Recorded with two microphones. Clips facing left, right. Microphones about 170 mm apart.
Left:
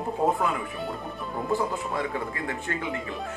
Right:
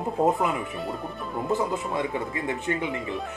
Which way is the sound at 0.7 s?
Centre (ahead or behind).